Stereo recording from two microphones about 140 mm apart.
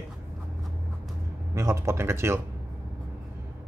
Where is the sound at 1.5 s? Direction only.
20° right (ahead or behind).